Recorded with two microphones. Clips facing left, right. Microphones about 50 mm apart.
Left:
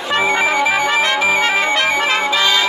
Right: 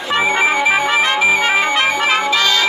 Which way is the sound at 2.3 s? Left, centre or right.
Centre.